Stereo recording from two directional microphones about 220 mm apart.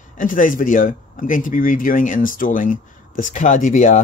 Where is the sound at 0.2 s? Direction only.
40° left (ahead or behind).